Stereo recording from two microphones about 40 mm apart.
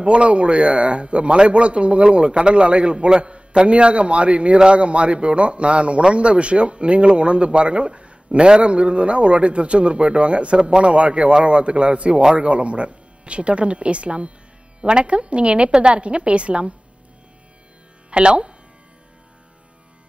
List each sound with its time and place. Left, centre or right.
0.0 s a man's voice: right
18.1 s a man's voice: right